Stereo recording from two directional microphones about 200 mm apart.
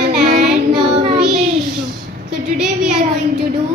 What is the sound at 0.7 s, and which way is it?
Child singing, 30° right (ahead or behind).